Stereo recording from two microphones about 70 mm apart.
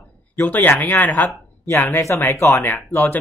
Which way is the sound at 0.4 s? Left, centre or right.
Left.